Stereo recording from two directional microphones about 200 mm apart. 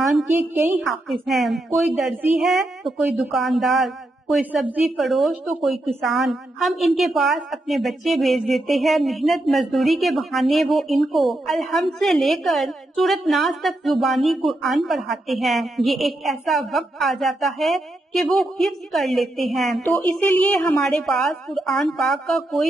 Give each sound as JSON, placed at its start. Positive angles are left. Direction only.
{"t": 0.3, "sound": "a woman's voice", "side_deg": -10}
{"t": 1.0, "sound": "a woman's voice", "side_deg": 0}